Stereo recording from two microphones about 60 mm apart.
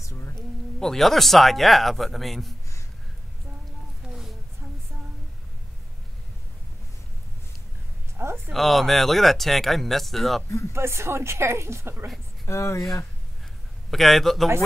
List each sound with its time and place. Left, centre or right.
0.0 s a sound: left
0.4 s speech: centre
4.1 s a sound: centre
8.5 s speech: centre
10.7 s a woman's voice: right
12.4 s speech: left
13.8 s speech: centre